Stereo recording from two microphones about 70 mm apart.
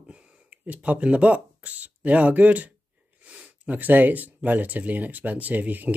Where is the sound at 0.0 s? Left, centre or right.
Centre.